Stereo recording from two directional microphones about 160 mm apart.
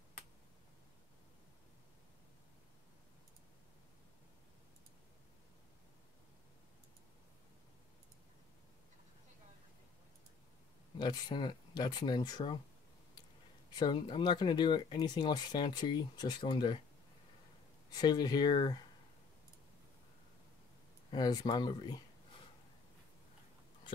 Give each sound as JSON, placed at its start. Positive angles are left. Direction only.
{"t": 11.0, "sound": "speech", "side_deg": 25}
{"t": 13.7, "sound": "speech", "side_deg": 30}
{"t": 17.9, "sound": "speech", "side_deg": 25}
{"t": 21.1, "sound": "speech", "side_deg": 25}